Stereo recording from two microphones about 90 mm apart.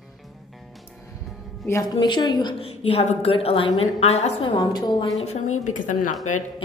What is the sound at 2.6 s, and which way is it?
A woman's voice, 90° left.